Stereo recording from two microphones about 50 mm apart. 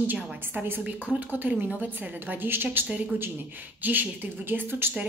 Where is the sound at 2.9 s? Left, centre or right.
Right.